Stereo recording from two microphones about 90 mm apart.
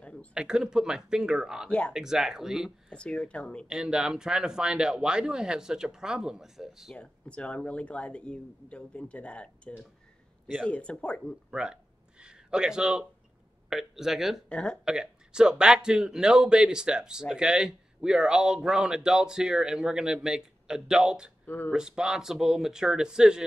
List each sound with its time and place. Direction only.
0.0 s a sound: 15° left (ahead or behind)
0.3 s a man's voice: 10° right (ahead or behind)
1.7 s speech: 15° left (ahead or behind)
2.0 s speech: 5° right (ahead or behind)
2.9 s speech: 10° left (ahead or behind)
3.6 s a man's voice: 10° right (ahead or behind)
7.0 s speech: 15° left (ahead or behind)
11.5 s a sound: 10° right (ahead or behind)
13.7 s speech: 5° right (ahead or behind)
14.5 s speech: 10° left (ahead or behind)
14.9 s a man's voice: 10° right (ahead or behind)
21.5 s speech: 20° left (ahead or behind)
21.7 s a man's voice: 10° right (ahead or behind)